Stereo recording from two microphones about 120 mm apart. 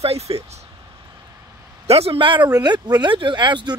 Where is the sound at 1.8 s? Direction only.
55° right (ahead or behind); by 3.7 s 40° right (ahead or behind).